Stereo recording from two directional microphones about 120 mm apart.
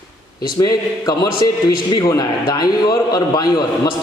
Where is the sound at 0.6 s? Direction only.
35° left (ahead or behind).